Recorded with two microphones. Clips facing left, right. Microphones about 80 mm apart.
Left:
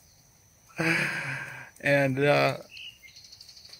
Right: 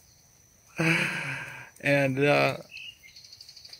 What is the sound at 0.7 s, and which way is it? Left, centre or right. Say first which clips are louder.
Speech: right 1 dB; centre.